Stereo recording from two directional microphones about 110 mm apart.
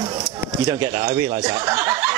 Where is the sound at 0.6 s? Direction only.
30° right (ahead or behind).